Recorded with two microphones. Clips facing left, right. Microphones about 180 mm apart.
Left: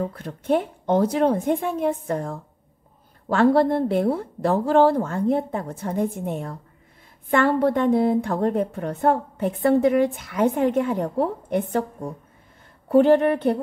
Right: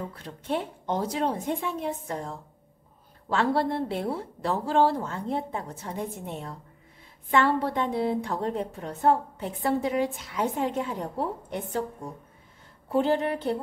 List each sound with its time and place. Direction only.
0.0 s a woman's voice: 50° left (ahead or behind)
12.9 s a woman's voice: 60° left (ahead or behind)